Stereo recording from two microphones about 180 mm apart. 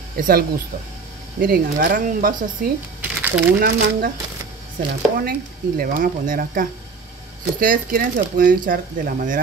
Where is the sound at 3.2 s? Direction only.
5° right (ahead or behind).